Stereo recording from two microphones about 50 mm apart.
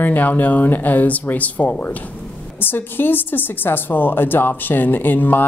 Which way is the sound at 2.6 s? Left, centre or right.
Left.